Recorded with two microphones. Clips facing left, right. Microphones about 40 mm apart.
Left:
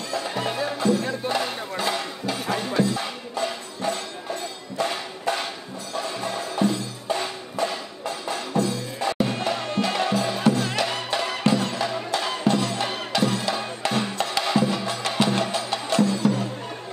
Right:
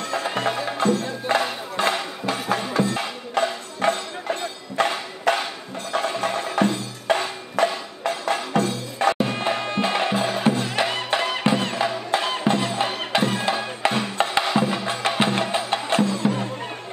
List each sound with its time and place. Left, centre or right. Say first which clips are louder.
0.1 s music: right 3 dB; right
1.8 s a sound: right 5 dB; right
2.9 s music: right 3 dB; right
9.2 s music: right 1 dB; right